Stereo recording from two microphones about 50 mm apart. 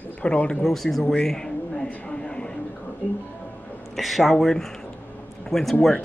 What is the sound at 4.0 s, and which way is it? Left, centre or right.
Speech, centre.